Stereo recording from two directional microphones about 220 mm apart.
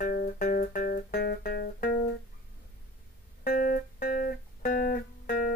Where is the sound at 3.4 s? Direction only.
40° left (ahead or behind).